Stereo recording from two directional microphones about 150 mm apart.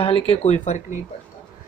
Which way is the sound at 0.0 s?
40° left (ahead or behind).